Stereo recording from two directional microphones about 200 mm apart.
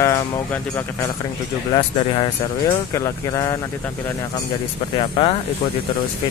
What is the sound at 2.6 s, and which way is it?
Speech, 15° left (ahead or behind).